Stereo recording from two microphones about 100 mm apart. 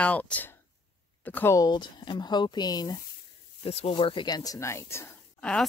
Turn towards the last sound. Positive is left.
turn(degrees=10)  # may be behind; listen again after turning